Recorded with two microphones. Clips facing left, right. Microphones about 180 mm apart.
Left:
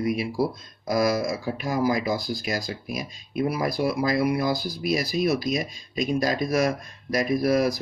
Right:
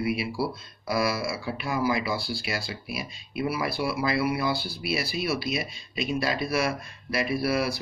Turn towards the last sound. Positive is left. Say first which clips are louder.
# left 5 dB
turn(degrees=45)  # may be behind; listen again after turning